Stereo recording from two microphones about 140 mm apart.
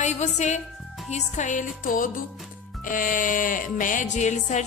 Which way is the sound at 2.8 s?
75° left (ahead or behind).